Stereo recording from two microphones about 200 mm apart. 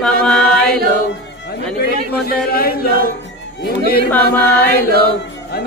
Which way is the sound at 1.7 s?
50° left (ahead or behind).